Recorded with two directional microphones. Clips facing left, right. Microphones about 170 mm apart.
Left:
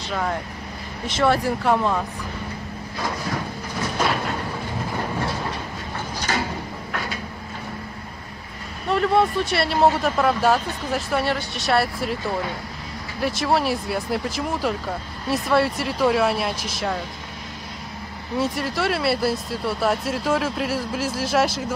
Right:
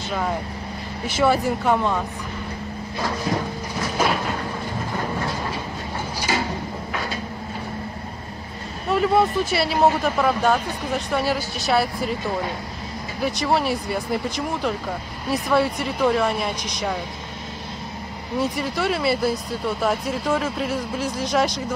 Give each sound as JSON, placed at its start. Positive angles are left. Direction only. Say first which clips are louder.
{"t": 0.1, "sound": "speech", "louder": "even", "side_deg": -5}
{"t": 3.3, "sound": "a sound", "louder": "right 6 dB", "side_deg": -25}
{"t": 6.3, "sound": "a sound", "louder": "right 1 dB", "side_deg": -10}
{"t": 8.8, "sound": "speech", "louder": "even", "side_deg": -5}
{"t": 13.2, "sound": "speech", "louder": "even", "side_deg": 0}
{"t": 18.4, "sound": "speech", "louder": "even", "side_deg": 0}